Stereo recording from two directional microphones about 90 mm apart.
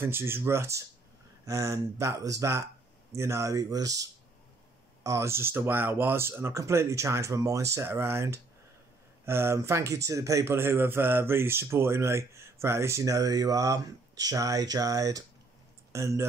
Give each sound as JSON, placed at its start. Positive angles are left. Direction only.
{"t": 0.0, "sound": "a man's voice", "side_deg": -25}